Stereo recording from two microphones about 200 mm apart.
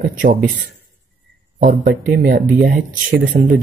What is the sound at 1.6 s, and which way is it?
Speech, 50° right (ahead or behind).